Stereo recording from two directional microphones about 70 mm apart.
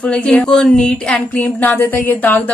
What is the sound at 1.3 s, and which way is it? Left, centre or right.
Speech, left.